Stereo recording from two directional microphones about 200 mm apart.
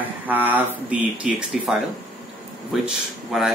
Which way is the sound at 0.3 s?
10° right (ahead or behind).